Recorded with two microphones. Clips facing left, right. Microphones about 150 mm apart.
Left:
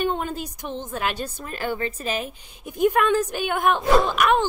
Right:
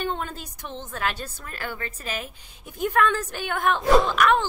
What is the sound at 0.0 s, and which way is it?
Speech, 15° left (ahead or behind).